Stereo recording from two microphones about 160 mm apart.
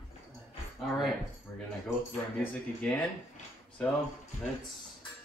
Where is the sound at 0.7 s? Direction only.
Centre (ahead or behind).